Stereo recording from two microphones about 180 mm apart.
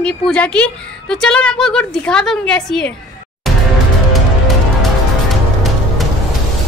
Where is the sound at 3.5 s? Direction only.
Centre (ahead or behind).